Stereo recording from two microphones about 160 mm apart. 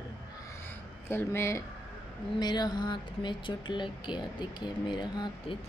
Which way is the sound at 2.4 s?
25° left (ahead or behind).